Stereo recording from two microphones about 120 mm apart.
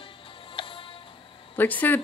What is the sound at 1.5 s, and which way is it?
Speech, 15° left (ahead or behind).